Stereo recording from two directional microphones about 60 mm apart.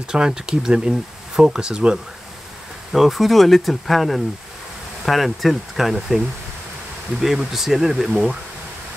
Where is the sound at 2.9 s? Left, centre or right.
Centre.